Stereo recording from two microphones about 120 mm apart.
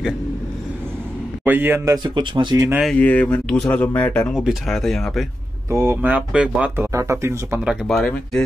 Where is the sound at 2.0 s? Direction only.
40° right (ahead or behind).